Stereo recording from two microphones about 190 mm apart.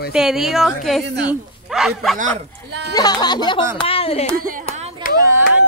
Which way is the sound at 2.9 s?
20° left (ahead or behind).